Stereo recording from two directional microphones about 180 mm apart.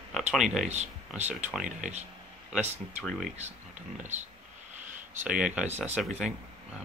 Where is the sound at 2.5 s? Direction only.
5° right (ahead or behind).